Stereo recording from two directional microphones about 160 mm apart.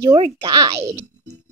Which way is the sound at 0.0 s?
35° right (ahead or behind).